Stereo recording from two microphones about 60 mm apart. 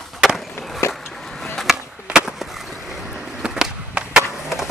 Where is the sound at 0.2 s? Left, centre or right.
Centre.